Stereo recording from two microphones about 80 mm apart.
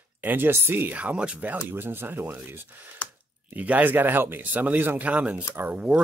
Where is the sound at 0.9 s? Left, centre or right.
Centre.